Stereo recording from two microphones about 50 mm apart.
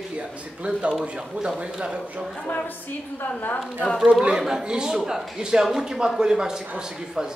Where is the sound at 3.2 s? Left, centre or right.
Left.